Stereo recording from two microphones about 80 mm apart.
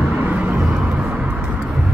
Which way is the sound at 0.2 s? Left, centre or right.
Centre.